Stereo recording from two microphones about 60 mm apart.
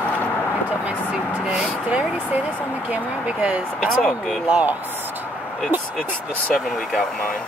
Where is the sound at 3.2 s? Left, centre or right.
Right.